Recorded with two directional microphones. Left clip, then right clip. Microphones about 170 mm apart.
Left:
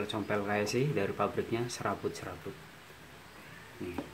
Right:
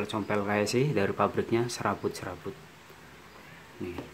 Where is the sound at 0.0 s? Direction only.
15° right (ahead or behind).